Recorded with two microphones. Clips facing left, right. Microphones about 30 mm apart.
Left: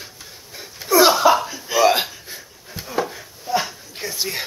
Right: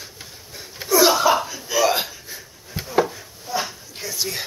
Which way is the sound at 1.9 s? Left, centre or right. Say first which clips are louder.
Left 4 dB; centre.